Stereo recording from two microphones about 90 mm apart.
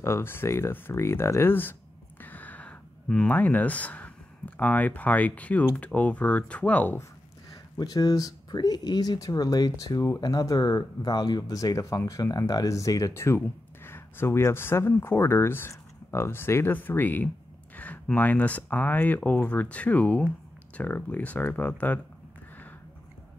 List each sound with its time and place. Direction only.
0.0 s speech: 25° left (ahead or behind)
2.2 s a sound: 20° left (ahead or behind)
4.6 s speech: 15° left (ahead or behind)
7.7 s speech: 45° left (ahead or behind); by 17.3 s 20° left (ahead or behind)
17.7 s a sound: 20° left (ahead or behind)
18.0 s speech: 15° left (ahead or behind)